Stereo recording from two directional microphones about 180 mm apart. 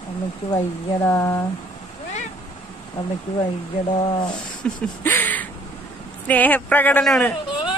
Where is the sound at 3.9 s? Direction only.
25° left (ahead or behind).